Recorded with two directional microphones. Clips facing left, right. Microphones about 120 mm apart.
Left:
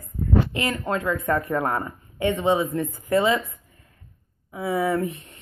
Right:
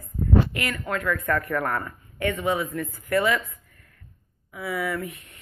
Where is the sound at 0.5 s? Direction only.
25° left (ahead or behind).